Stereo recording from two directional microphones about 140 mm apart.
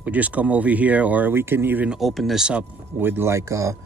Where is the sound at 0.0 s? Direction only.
10° right (ahead or behind).